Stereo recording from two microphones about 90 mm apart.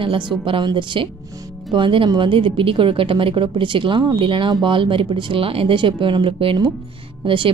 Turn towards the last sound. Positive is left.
turn(degrees=-70)  # may be behind; listen again after turning